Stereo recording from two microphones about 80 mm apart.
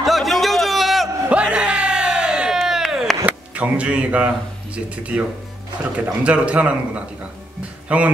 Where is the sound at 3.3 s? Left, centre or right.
Centre.